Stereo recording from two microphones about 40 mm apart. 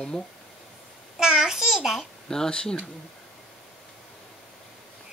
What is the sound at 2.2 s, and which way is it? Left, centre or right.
Speech, centre.